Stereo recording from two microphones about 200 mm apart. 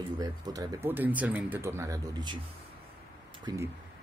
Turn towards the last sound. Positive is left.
turn(degrees=-15)  # may be behind; listen again after turning